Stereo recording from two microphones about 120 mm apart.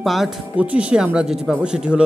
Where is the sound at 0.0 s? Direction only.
Centre (ahead or behind).